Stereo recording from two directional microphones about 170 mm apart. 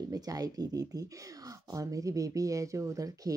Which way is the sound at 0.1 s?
20° right (ahead or behind).